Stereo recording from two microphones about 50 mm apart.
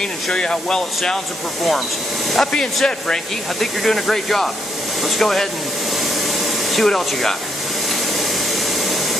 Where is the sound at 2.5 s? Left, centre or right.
Centre.